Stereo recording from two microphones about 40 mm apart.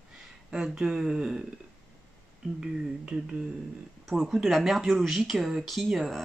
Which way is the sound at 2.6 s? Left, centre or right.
Right.